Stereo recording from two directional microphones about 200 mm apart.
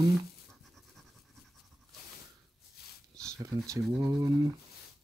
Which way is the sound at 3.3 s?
15° right (ahead or behind).